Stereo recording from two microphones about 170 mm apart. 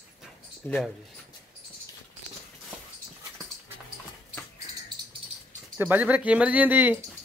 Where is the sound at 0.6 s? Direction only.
10° left (ahead or behind).